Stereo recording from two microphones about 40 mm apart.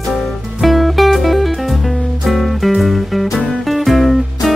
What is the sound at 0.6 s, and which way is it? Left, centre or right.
Music, centre.